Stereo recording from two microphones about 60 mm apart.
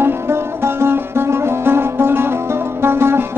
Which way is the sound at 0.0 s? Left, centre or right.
Right.